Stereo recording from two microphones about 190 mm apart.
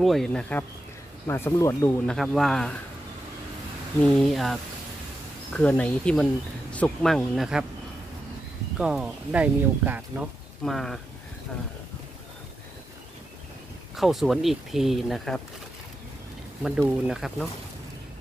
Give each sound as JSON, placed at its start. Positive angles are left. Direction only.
{"t": 0.0, "sound": "speech", "side_deg": 0}
{"t": 2.1, "sound": "speech", "side_deg": 0}
{"t": 4.0, "sound": "speech", "side_deg": 5}
{"t": 8.7, "sound": "speech", "side_deg": -5}
{"t": 13.9, "sound": "speech", "side_deg": 0}
{"t": 16.6, "sound": "speech", "side_deg": -5}